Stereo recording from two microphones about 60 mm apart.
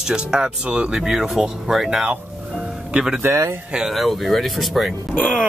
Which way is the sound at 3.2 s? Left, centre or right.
Right.